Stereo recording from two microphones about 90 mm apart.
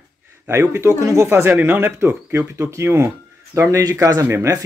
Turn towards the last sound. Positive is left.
turn(degrees=-30)  # may be behind; listen again after turning